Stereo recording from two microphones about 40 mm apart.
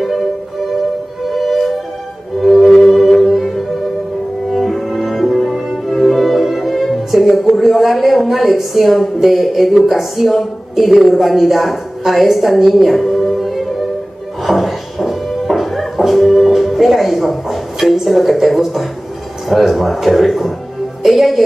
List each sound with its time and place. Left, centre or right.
1.3 s music: centre
7.4 s a woman's voice: centre
14.4 s music: centre
18.0 s speech: centre